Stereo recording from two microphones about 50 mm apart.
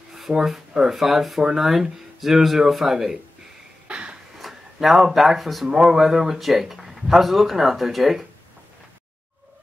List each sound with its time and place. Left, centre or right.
0.1 s speech: centre
3.8 s a sound: right
4.4 s speech: centre